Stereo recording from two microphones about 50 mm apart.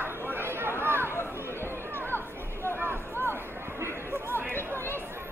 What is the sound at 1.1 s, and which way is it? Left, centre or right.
Chatter, left.